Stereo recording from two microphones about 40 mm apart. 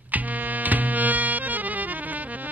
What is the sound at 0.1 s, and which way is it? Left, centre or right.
Music, right.